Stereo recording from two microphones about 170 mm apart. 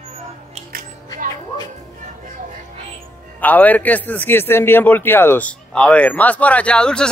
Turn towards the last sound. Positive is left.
turn(degrees=5)  # may be behind; listen again after turning